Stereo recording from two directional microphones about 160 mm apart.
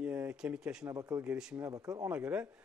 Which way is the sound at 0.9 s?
20° right (ahead or behind).